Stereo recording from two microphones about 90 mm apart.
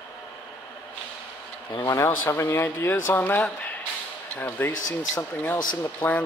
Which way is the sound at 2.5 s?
25° left (ahead or behind).